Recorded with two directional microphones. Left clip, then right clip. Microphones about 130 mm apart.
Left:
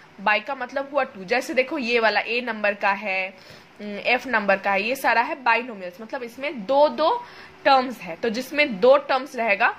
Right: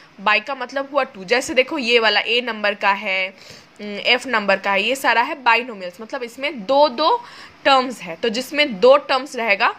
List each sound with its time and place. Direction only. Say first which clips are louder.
0.2 s a woman's voice: right 4 dB; 25° right (ahead or behind)